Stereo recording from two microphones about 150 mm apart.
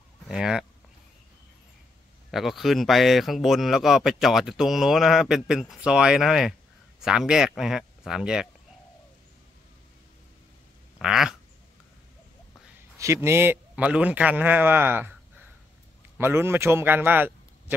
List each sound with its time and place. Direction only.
0.3 s speech: 5° right (ahead or behind)
2.3 s speech: centre (ahead or behind)
11.0 s a sound: 5° right (ahead or behind)
12.9 s a man's voice: 20° right (ahead or behind)
16.2 s a man's voice: 15° right (ahead or behind)